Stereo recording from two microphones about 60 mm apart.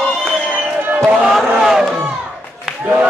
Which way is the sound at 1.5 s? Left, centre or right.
Centre.